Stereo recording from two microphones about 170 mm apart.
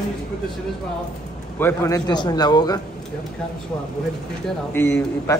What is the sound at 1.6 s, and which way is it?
A man's voice, 15° left (ahead or behind).